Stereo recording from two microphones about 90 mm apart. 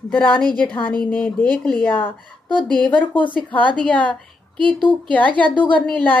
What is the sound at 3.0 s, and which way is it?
Speech, 65° left (ahead or behind).